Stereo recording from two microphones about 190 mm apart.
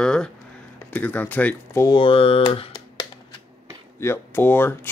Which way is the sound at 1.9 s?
30° left (ahead or behind).